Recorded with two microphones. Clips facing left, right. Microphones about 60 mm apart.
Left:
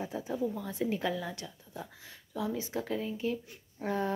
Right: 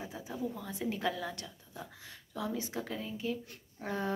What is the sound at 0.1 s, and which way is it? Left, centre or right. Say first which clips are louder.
A woman's voice: left 5 dB; left.